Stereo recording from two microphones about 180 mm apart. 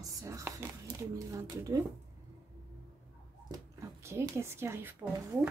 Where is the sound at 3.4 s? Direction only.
20° right (ahead or behind).